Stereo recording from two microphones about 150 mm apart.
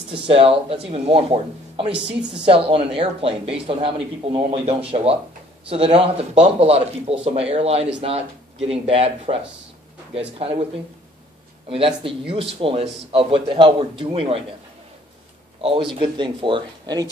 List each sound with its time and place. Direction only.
0.1 s speech: 40° right (ahead or behind)
1.9 s a woman's voice: 5° right (ahead or behind)
2.4 s speech: 35° right (ahead or behind)
11.7 s speech: 40° right (ahead or behind)
15.6 s speech: 35° right (ahead or behind)